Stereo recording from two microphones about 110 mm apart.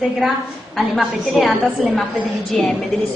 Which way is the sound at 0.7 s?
Centre (ahead or behind).